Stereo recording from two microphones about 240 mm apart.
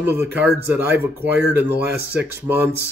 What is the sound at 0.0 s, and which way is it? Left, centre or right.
Speech, centre.